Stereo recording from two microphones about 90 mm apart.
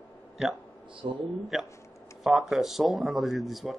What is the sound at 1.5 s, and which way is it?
Speech, 5° right (ahead or behind).